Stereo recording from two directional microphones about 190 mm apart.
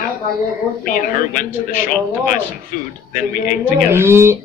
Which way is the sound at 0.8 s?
45° left (ahead or behind).